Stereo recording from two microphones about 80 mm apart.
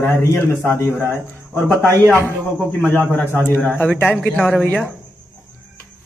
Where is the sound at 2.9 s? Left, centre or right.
Left.